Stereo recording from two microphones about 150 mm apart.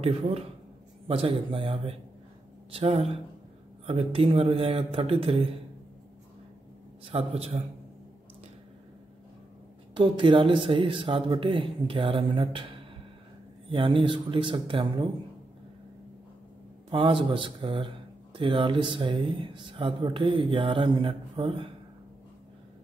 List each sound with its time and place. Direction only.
0.0 s speech: 40° right (ahead or behind)
7.1 s speech: 40° right (ahead or behind)
9.9 s speech: 35° right (ahead or behind)
13.7 s speech: 35° right (ahead or behind)
16.9 s speech: 35° right (ahead or behind)